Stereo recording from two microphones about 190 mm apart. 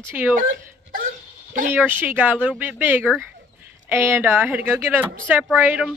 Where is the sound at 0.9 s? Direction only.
45° right (ahead or behind).